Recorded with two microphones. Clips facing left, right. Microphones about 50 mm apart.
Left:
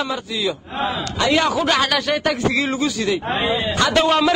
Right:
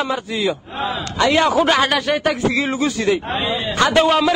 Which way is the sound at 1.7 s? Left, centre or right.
Centre.